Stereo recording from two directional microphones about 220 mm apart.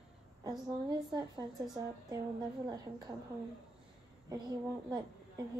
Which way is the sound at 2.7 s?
20° right (ahead or behind).